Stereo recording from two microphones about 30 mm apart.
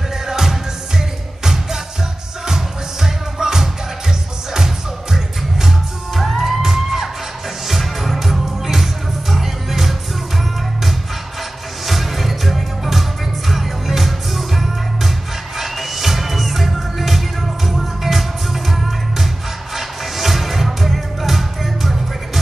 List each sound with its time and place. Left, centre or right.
0.3 s music: centre
11.8 s music: centre